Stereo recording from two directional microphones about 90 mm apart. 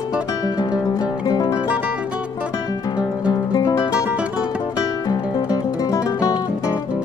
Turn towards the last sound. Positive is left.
turn(degrees=45)  # may be behind; listen again after turning